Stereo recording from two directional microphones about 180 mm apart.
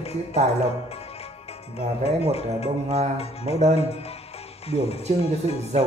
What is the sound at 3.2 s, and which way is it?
Speech, 35° left (ahead or behind).